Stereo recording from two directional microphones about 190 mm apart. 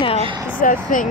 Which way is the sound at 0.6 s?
45° left (ahead or behind).